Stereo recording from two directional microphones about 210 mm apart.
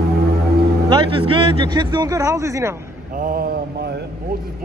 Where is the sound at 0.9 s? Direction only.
25° right (ahead or behind).